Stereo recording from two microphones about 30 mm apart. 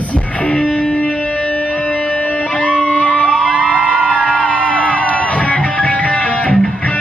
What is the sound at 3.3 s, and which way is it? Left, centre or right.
Music, right.